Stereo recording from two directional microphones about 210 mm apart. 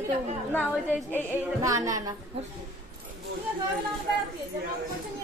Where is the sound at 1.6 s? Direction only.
15° right (ahead or behind).